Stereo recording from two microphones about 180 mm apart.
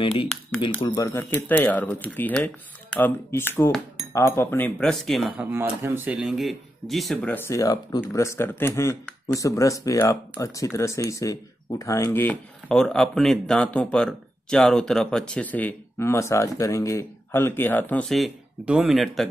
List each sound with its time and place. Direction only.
0.0 s speech: 30° left (ahead or behind); by 5.5 s centre (ahead or behind)
5.5 s speech: 15° right (ahead or behind)